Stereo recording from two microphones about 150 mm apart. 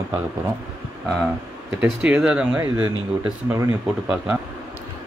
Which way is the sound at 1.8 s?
10° right (ahead or behind).